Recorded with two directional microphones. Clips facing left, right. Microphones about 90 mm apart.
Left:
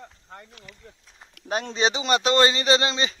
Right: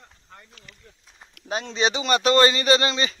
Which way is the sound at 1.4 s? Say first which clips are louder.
Even; 45° left (ahead or behind).